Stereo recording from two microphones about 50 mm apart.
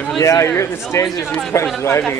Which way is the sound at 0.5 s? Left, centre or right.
Left.